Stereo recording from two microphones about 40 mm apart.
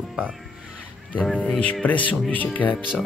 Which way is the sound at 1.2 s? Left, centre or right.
Left.